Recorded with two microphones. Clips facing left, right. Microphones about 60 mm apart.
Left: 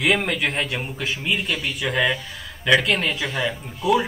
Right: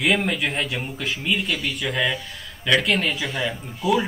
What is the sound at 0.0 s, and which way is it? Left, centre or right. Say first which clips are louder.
Speech: left 1 dB; centre.